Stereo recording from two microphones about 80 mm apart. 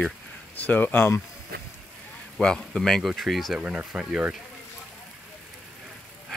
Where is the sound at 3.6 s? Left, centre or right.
Centre.